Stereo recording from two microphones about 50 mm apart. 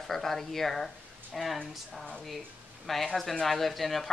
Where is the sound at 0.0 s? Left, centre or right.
Centre.